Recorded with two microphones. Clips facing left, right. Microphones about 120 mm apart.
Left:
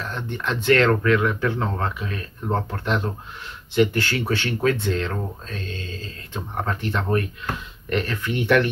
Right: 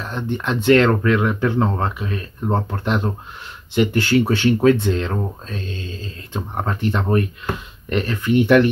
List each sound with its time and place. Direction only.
0.0 s speech: 15° right (ahead or behind)